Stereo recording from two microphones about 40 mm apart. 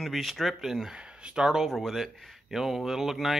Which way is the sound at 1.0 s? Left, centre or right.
Right.